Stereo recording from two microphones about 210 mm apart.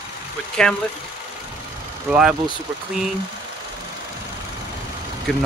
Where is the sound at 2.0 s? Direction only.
5° right (ahead or behind).